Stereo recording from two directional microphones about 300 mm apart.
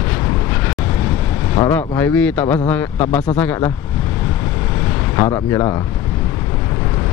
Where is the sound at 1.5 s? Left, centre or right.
Centre.